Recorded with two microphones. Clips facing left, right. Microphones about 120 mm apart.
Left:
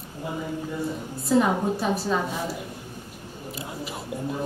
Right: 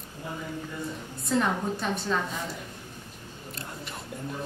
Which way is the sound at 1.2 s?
5° left (ahead or behind).